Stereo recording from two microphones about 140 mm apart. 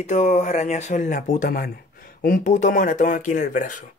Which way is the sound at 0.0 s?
60° left (ahead or behind).